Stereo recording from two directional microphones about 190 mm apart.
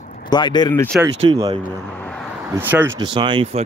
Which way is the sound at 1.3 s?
20° right (ahead or behind).